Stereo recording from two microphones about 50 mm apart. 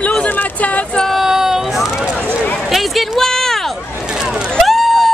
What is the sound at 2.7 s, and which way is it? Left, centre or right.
Speech, centre.